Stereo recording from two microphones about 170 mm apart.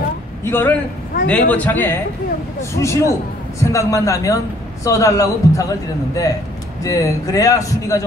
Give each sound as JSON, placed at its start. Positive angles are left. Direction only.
{"t": 0.4, "sound": "a man's voice", "side_deg": 15}